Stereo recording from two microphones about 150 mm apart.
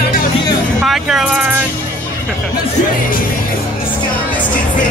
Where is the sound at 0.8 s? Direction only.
5° right (ahead or behind).